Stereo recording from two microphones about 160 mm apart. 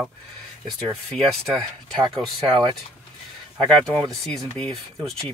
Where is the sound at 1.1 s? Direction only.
Centre (ahead or behind).